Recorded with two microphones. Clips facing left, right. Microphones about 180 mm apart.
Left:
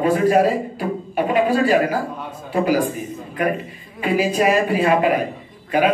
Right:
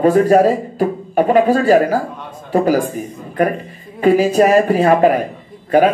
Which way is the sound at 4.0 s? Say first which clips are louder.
Right 7 dB; 40° right (ahead or behind).